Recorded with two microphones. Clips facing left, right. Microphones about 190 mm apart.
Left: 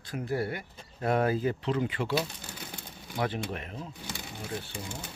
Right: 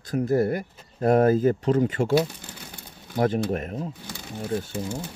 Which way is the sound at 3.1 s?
45° right (ahead or behind).